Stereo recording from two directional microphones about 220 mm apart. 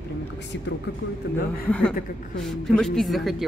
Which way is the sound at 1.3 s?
50° left (ahead or behind).